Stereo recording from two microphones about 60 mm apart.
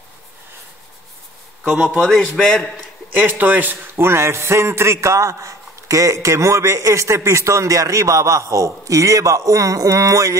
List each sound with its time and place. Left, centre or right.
1.6 s a man's voice: centre
2.0 s a man's voice: centre
3.2 s speech: right
3.9 s a man's voice: right